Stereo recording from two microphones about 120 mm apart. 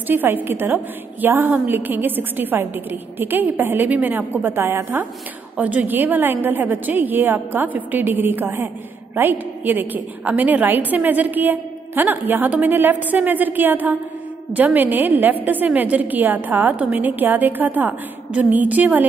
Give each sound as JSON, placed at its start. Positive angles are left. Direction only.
{"t": 0.0, "sound": "a woman's voice", "side_deg": -15}